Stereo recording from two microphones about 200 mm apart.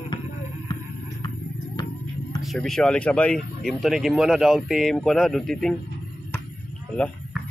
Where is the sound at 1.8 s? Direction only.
20° left (ahead or behind).